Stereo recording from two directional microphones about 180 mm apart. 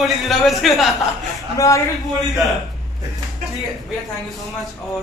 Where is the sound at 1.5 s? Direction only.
20° left (ahead or behind).